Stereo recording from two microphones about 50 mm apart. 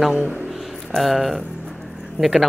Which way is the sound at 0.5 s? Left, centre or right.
Centre.